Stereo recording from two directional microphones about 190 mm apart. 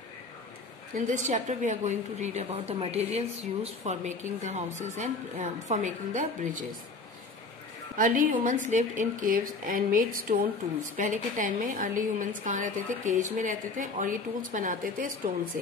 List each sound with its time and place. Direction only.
0.9 s a woman's voice: 40° right (ahead or behind)
8.0 s a woman's voice: 45° right (ahead or behind)